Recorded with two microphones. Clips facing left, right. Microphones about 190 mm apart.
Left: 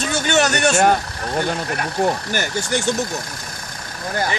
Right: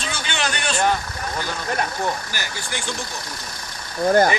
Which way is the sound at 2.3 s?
45° left (ahead or behind).